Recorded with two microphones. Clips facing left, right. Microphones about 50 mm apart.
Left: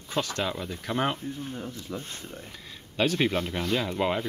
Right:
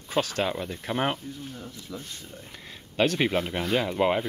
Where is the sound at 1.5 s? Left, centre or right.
Left.